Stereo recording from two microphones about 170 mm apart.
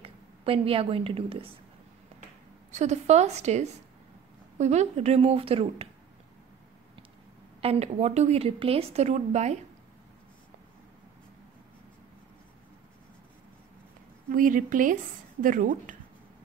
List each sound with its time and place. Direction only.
0.0 s a woman's voice: 35° right (ahead or behind)
2.7 s a woman's voice: 45° right (ahead or behind)
7.6 s a woman's voice: 35° right (ahead or behind)
14.3 s speech: 50° right (ahead or behind)